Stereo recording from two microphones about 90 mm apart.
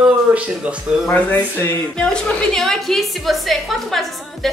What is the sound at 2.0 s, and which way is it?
A woman's voice, 10° left (ahead or behind).